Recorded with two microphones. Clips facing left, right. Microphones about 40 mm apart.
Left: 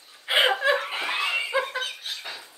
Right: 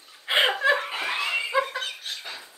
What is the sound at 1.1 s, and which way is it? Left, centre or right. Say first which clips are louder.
Laughter: left 1 dB; centre.